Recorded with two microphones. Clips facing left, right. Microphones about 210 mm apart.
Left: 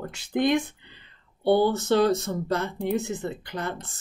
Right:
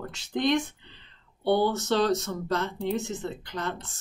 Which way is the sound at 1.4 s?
10° left (ahead or behind).